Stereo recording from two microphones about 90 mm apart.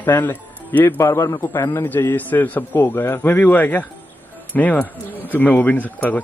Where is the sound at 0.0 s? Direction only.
25° left (ahead or behind).